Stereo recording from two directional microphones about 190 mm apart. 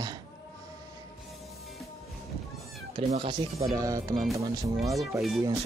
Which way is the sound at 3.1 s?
30° right (ahead or behind).